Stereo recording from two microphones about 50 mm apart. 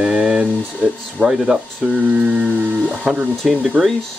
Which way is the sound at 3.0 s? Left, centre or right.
Centre.